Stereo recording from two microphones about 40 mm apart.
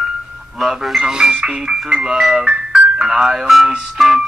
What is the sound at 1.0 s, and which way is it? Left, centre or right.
Speech, centre.